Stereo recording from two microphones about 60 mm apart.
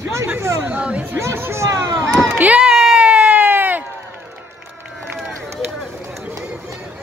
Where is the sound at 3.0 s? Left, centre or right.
Right.